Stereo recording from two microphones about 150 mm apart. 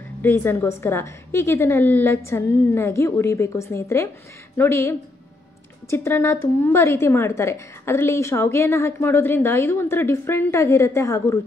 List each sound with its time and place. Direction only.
0.2 s a woman's voice: 15° left (ahead or behind)